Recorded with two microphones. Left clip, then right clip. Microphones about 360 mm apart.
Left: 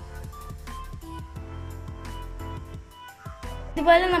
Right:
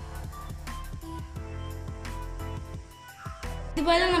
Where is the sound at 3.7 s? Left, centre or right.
Left.